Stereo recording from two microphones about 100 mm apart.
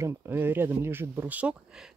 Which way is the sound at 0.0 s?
20° right (ahead or behind).